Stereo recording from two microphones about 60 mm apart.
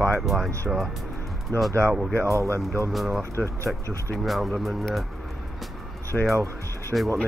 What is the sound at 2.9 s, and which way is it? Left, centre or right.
Speech, centre.